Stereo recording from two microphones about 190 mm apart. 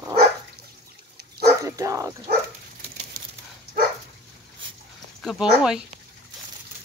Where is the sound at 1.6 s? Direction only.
15° right (ahead or behind).